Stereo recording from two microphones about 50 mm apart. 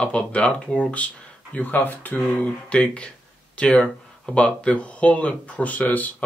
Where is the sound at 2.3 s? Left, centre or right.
Left.